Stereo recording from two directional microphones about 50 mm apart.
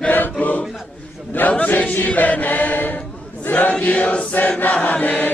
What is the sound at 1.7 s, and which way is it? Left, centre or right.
Chant, left.